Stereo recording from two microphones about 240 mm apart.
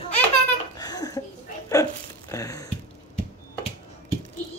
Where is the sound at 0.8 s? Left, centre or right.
Centre.